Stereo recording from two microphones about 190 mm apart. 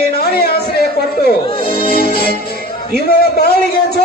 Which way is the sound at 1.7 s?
55° left (ahead or behind).